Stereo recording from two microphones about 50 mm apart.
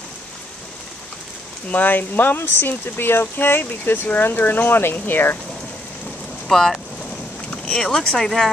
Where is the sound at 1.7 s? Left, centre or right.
Left.